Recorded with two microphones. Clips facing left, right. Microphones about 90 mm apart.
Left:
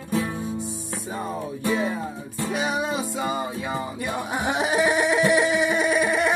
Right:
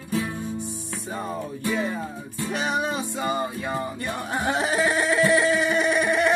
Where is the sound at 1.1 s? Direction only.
5° left (ahead or behind).